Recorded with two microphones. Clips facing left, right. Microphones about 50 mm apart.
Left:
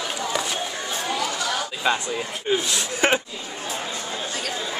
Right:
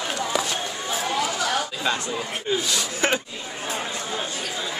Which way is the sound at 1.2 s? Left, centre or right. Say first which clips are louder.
Right 1 dB; centre.